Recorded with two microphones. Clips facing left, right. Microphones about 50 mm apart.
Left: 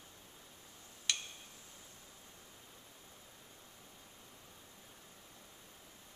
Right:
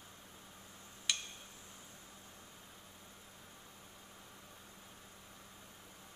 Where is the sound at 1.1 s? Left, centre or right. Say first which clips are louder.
Even; centre.